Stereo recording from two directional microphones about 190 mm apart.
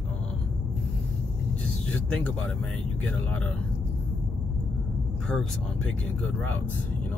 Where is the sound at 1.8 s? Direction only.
5° left (ahead or behind).